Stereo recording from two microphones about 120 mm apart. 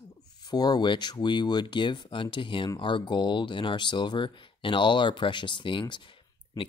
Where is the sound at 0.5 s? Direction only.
35° left (ahead or behind).